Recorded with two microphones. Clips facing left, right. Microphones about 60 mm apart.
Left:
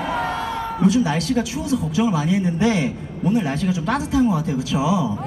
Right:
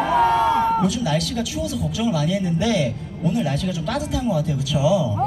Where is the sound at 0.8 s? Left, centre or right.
Left.